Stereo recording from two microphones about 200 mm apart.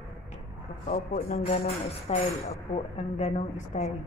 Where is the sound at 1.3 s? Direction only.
35° left (ahead or behind).